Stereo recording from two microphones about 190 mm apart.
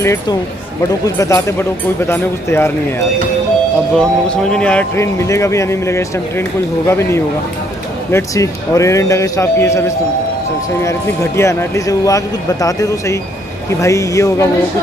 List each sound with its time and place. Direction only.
0.0 s speech: 15° left (ahead or behind)
3.9 s speech: 5° left (ahead or behind)